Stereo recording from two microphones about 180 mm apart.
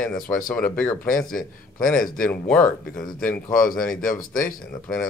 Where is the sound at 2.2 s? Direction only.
5° left (ahead or behind).